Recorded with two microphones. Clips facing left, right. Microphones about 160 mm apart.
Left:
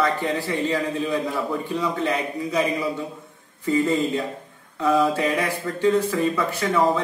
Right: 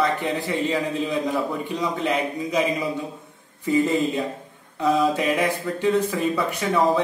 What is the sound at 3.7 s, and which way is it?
A man's voice, 15° right (ahead or behind).